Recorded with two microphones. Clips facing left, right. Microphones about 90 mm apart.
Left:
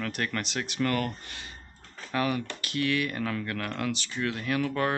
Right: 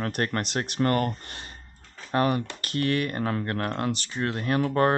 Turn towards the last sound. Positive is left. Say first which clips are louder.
# right 5 dB
turn(degrees=-40)  # may be behind; listen again after turning